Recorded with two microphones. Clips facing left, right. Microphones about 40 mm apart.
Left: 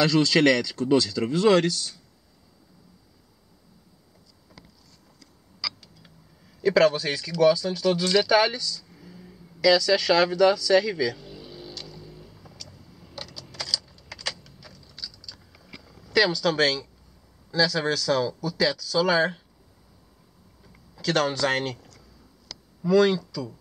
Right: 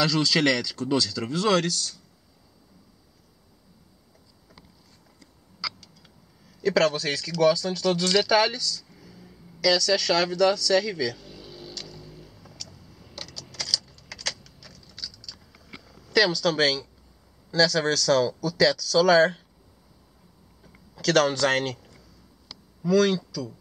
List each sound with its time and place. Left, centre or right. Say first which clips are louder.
0.0 s speech: left 3 dB; centre
5.8 s a sound: left 1 dB; centre
17.5 s speech: right 2 dB; centre
21.0 s speech: right 3 dB; centre
22.8 s speech: left 2 dB; centre